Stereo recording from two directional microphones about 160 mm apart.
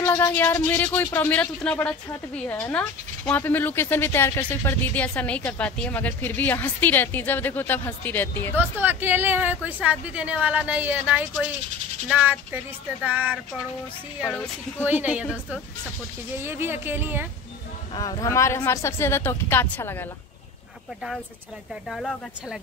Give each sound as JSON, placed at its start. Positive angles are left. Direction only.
{"t": 0.0, "sound": "speech", "side_deg": 15}
{"t": 8.5, "sound": "a woman's voice", "side_deg": -10}
{"t": 14.2, "sound": "speech", "side_deg": 10}
{"t": 14.9, "sound": "a woman's voice", "side_deg": -10}
{"t": 17.9, "sound": "speech", "side_deg": 20}
{"t": 21.9, "sound": "speech", "side_deg": 0}